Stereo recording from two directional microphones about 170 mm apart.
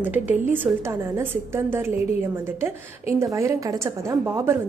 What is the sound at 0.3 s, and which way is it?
A woman's voice, 10° right (ahead or behind).